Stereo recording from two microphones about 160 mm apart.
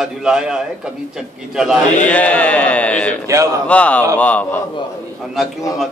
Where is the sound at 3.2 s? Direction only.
20° right (ahead or behind).